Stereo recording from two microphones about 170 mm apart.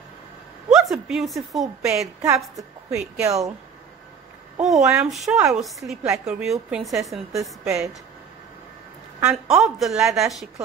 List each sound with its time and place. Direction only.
0.7 s a sound: centre (ahead or behind)
1.0 s a woman's voice: centre (ahead or behind)
2.2 s a woman's voice: 20° right (ahead or behind)
4.6 s a woman's voice: centre (ahead or behind)
9.2 s a woman's voice: 5° right (ahead or behind)